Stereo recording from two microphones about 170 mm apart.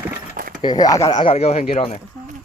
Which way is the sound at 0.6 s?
25° left (ahead or behind).